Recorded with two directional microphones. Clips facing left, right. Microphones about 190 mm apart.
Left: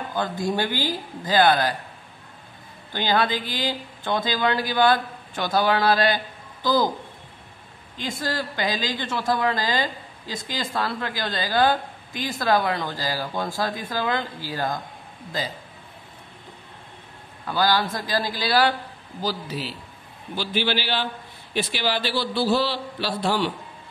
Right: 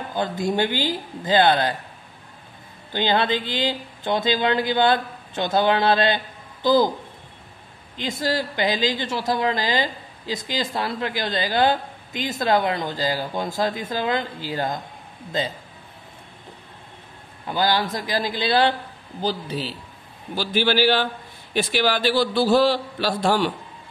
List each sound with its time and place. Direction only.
0.1 s speech: 20° right (ahead or behind)
2.9 s speech: 20° right (ahead or behind)
8.0 s speech: 20° right (ahead or behind)
17.5 s speech: 20° right (ahead or behind)
20.3 s a man's voice: 45° right (ahead or behind)